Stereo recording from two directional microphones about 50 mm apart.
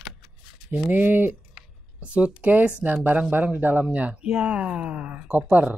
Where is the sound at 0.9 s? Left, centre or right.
Right.